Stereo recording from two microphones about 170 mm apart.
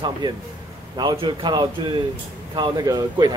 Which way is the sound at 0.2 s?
30° right (ahead or behind).